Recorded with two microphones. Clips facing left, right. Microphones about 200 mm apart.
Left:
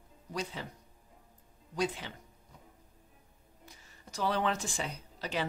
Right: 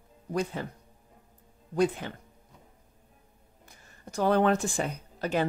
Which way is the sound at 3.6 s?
50° right (ahead or behind).